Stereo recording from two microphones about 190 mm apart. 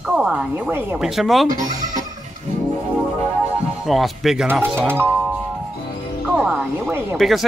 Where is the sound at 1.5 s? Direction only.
45° right (ahead or behind).